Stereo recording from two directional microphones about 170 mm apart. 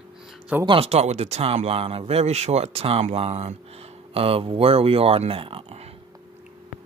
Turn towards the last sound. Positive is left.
turn(degrees=-35)  # may be behind; listen again after turning